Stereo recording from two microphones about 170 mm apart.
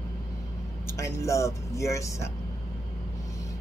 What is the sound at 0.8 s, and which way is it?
Speech, 15° left (ahead or behind).